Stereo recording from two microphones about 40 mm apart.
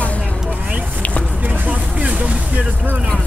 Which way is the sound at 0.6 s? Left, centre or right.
Right.